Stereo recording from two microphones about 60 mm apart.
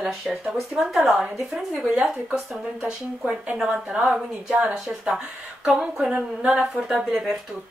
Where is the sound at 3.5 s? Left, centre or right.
Centre.